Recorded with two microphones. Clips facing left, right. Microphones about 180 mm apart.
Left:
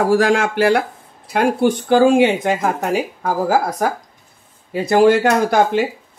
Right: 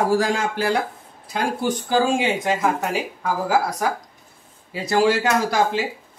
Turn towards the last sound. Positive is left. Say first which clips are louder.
# left 5 dB
turn(degrees=55)  # may be behind; listen again after turning